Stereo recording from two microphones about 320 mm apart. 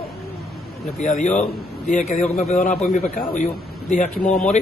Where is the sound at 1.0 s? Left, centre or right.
Left.